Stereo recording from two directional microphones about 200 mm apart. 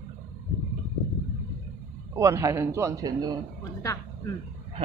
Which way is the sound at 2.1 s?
15° right (ahead or behind).